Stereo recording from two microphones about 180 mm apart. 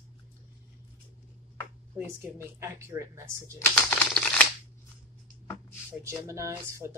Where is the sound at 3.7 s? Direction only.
5° left (ahead or behind).